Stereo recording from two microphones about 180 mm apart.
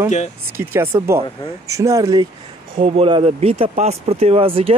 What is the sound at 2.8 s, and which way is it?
Speech, 30° right (ahead or behind).